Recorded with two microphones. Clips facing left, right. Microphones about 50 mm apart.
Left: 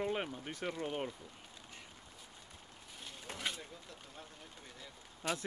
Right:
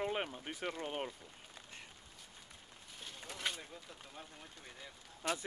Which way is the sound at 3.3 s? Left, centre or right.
Left.